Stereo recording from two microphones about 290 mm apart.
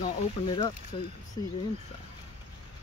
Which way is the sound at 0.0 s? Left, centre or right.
Centre.